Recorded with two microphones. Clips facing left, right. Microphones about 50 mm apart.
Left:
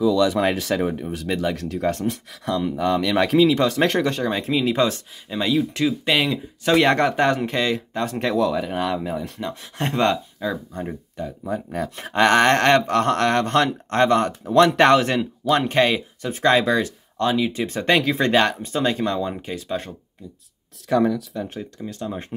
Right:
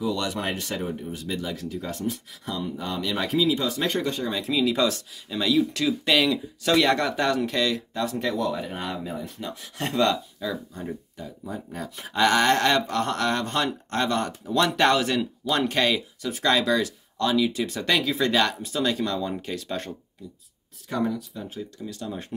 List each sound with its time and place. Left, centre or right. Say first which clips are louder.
0.7 s speech: left 7 dB; left
8.7 s speech: left 7 dB; left
9.4 s speech: left 4 dB; left; by 19.9 s centre
20.9 s speech: left 7 dB; left
21.5 s speech: left 3 dB; left